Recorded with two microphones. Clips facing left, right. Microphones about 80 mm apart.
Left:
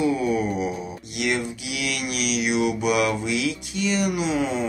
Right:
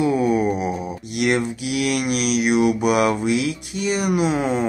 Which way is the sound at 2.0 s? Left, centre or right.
Right.